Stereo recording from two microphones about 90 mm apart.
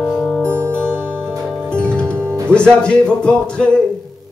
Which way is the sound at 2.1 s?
25° right (ahead or behind).